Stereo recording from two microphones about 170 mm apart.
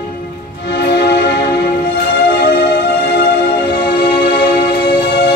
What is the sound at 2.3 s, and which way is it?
Music, 70° left (ahead or behind).